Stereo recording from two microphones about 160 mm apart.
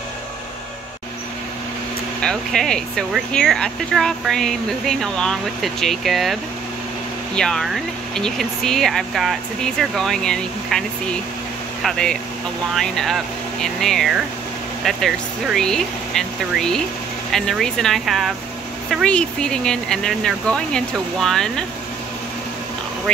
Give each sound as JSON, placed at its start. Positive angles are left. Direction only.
{"t": 2.2, "sound": "speech", "side_deg": 5}
{"t": 7.3, "sound": "speech", "side_deg": 5}
{"t": 11.8, "sound": "speech", "side_deg": 5}
{"t": 23.1, "sound": "speech", "side_deg": 5}